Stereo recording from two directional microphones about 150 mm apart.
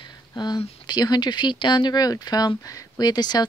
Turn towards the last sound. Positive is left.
turn(degrees=25)  # may be behind; listen again after turning